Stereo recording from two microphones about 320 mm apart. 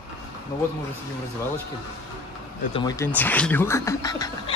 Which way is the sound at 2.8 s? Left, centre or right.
Centre.